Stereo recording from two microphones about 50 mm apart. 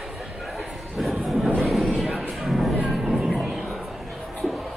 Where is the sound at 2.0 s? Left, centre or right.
Centre.